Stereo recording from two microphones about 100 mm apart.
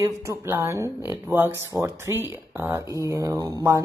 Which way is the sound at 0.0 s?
30° right (ahead or behind).